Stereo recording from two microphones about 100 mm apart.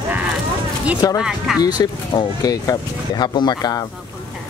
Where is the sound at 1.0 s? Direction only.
40° left (ahead or behind).